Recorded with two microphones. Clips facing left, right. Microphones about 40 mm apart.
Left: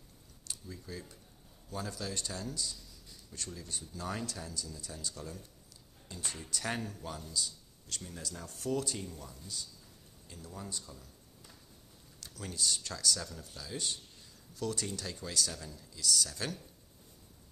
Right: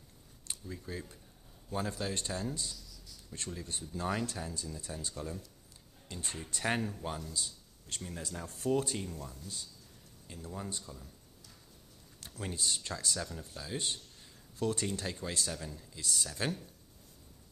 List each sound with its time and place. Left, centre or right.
0.5 s speech: right
7.3 s a sound: right
8.2 s speech: right
10.2 s speech: right
12.4 s speech: right